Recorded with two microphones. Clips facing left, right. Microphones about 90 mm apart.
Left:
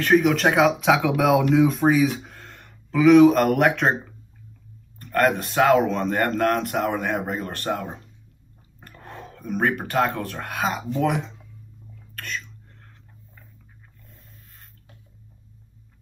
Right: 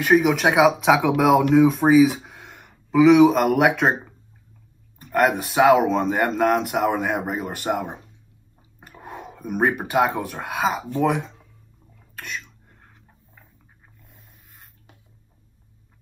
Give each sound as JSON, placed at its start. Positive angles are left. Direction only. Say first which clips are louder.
{"t": 0.0, "sound": "speech", "louder": "right 1 dB", "side_deg": -10}
{"t": 12.2, "sound": "whispering", "louder": "even", "side_deg": -10}
{"t": 14.0, "sound": "a sound", "louder": "left 2 dB", "side_deg": -15}